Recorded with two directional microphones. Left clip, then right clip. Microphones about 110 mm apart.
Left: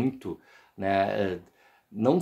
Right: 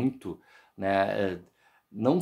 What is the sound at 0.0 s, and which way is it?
Speech, 30° right (ahead or behind).